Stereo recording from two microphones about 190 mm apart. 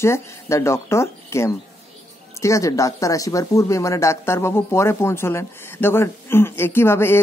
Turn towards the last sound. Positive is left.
turn(degrees=10)  # may be behind; listen again after turning